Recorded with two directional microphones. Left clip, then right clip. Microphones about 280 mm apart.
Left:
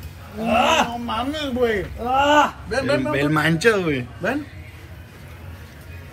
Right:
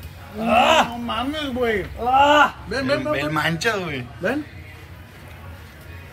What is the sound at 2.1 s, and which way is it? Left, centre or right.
Speech, centre.